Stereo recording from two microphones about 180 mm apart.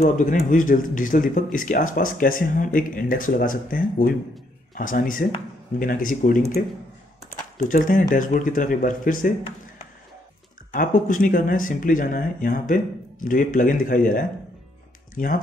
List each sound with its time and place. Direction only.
0.0 s speech: 45° left (ahead or behind)
7.5 s speech: 45° left (ahead or behind)
10.7 s speech: 45° left (ahead or behind)